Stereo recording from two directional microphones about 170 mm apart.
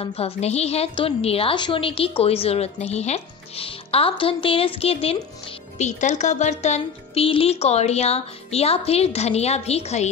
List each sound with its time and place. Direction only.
0.0 s a woman's voice: 35° left (ahead or behind)